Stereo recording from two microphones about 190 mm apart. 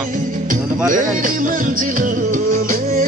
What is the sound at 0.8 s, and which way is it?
Speech, 45° right (ahead or behind).